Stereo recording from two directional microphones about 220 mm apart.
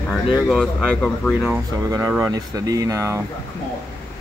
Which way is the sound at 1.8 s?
15° right (ahead or behind).